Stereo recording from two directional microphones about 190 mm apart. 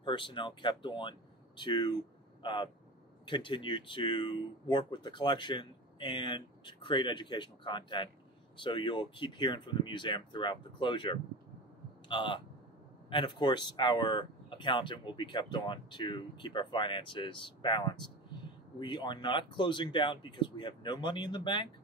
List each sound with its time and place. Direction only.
0.0 s speech: 25° left (ahead or behind)